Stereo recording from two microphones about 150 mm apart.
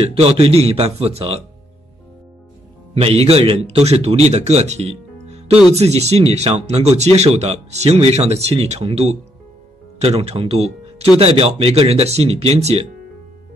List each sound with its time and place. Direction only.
0.1 s speech: 40° right (ahead or behind)
2.9 s a man's voice: 40° right (ahead or behind)